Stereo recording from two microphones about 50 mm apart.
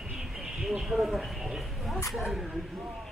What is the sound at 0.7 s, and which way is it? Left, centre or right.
Speech, centre.